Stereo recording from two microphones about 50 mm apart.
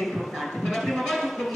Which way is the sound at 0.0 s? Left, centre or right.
Centre.